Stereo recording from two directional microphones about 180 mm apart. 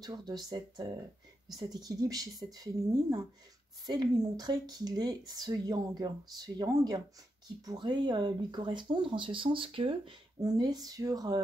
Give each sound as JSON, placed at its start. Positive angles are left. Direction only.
{"t": 0.0, "sound": "speech", "side_deg": -20}